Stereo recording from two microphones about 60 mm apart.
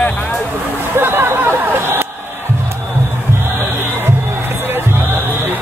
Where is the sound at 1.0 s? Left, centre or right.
Right.